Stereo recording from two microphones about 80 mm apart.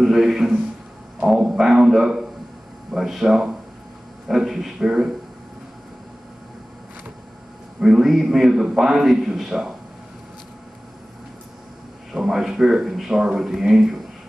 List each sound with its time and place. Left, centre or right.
0.0 s a man's voice: centre
7.8 s a man's voice: centre
12.1 s a man's voice: centre